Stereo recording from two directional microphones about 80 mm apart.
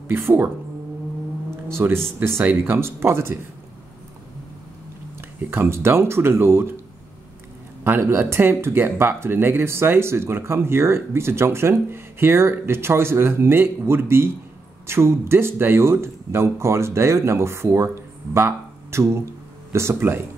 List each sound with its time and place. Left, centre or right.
0.1 s speech: right
1.7 s speech: right
5.4 s speech: right
7.8 s speech: right